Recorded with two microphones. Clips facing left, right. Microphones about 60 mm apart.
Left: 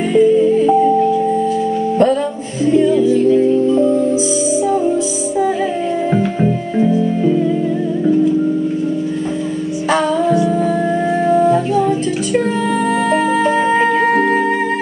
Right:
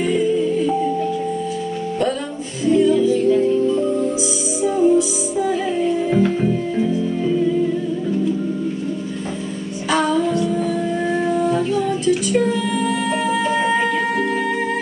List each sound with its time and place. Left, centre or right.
0.1 s music: left
2.6 s music: left
9.8 s music: left
13.1 s music: left